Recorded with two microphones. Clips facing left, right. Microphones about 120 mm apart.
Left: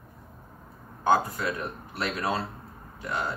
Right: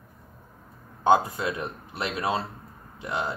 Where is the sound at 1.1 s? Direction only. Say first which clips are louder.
Right 3 dB; 20° right (ahead or behind).